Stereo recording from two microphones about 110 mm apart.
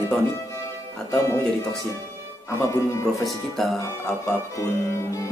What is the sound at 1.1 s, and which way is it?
Speech, 30° left (ahead or behind).